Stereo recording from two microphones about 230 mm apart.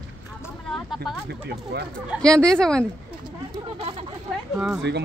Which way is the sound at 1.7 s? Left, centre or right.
Right.